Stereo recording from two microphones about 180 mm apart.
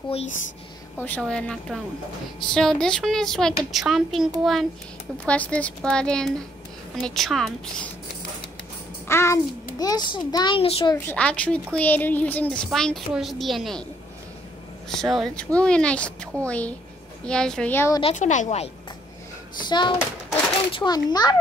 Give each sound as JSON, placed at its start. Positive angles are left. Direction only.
{"t": 0.9, "sound": "a woman's voice", "side_deg": 10}
{"t": 9.0, "sound": "a child's voice", "side_deg": 15}
{"t": 11.0, "sound": "a woman's voice", "side_deg": 10}
{"t": 14.9, "sound": "a woman's voice", "side_deg": 0}
{"t": 18.0, "sound": "a woman's voice", "side_deg": 45}
{"t": 19.6, "sound": "a child's voice", "side_deg": 25}